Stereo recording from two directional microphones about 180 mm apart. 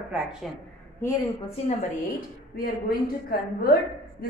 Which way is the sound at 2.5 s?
55° left (ahead or behind).